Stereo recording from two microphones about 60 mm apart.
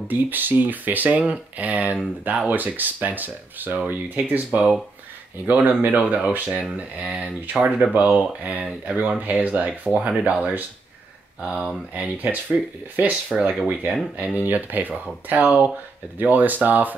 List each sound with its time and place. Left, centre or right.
0.1 s speech: right
14.2 s speech: right